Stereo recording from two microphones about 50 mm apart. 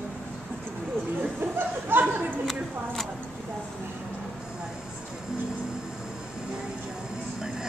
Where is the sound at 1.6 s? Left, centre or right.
Right.